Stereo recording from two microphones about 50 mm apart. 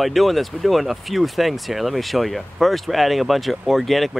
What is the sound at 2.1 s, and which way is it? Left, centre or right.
Speech, centre.